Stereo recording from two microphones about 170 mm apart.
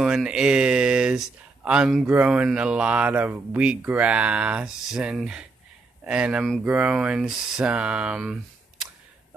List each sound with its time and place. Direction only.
0.0 s speech: 5° right (ahead or behind)